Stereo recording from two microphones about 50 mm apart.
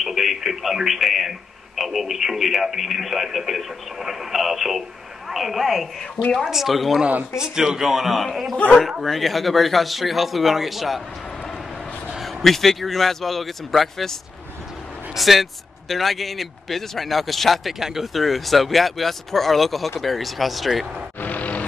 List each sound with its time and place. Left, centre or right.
0.0 s speech: centre
7.3 s a man's voice: centre
12.2 s speech: centre
15.1 s speech: centre
21.2 s vehicle: left